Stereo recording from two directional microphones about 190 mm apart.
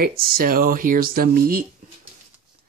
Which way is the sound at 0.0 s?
50° right (ahead or behind).